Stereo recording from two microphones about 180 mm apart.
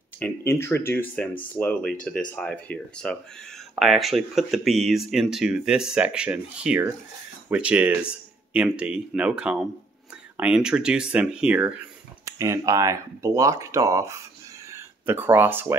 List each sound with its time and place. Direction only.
0.2 s speech: 15° left (ahead or behind); by 15.7 s 10° right (ahead or behind)